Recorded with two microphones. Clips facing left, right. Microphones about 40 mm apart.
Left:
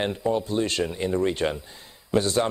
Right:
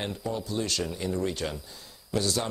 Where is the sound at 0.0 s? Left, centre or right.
Left.